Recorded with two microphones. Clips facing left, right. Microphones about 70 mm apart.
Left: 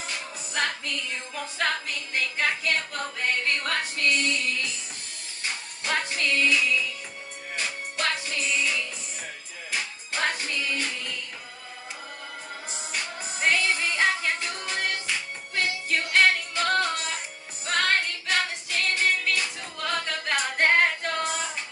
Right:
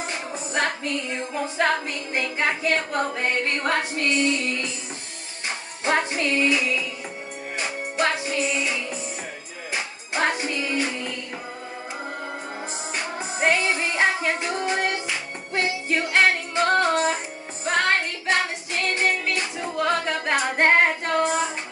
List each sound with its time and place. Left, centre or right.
0.0 s music: right
13.2 s music: right
19.3 s female singing: right